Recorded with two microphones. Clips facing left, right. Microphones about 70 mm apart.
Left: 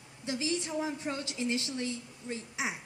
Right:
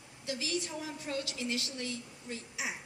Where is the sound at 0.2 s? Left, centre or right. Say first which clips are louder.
Left 3 dB; left.